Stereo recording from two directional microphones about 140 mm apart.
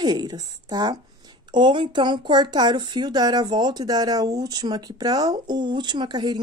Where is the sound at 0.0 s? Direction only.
30° right (ahead or behind).